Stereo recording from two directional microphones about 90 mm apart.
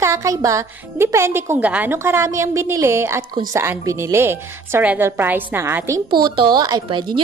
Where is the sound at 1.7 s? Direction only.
15° right (ahead or behind).